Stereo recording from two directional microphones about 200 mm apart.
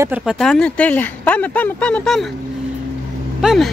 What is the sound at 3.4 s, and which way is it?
Speech, centre (ahead or behind).